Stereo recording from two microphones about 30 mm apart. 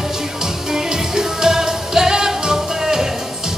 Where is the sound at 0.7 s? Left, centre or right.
Right.